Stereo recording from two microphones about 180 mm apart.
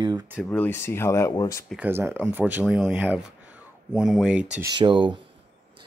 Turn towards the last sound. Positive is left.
turn(degrees=-25)  # may be behind; listen again after turning